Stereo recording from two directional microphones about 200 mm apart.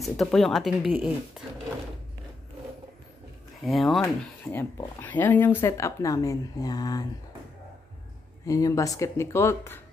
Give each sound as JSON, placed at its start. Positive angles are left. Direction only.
{"t": 0.0, "sound": "speech", "side_deg": 0}
{"t": 3.6, "sound": "speech", "side_deg": 0}
{"t": 4.0, "sound": "speech", "side_deg": 10}
{"t": 8.5, "sound": "speech", "side_deg": 15}